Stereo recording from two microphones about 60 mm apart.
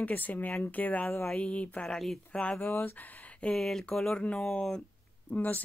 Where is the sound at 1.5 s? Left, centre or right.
Left.